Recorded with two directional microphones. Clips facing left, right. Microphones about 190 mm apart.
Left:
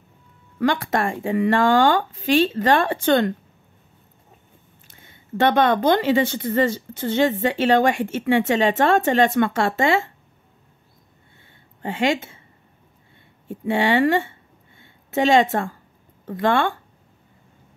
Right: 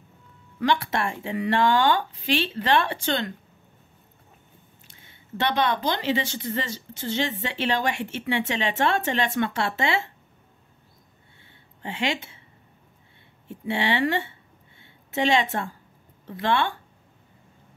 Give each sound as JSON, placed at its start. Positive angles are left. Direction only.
{"t": 0.6, "sound": "speech", "side_deg": 50}
{"t": 4.8, "sound": "speech", "side_deg": 50}
{"t": 11.8, "sound": "speech", "side_deg": 45}
{"t": 13.5, "sound": "speech", "side_deg": 50}
{"t": 14.8, "sound": "a sound", "side_deg": 50}
{"t": 16.3, "sound": "speech", "side_deg": 50}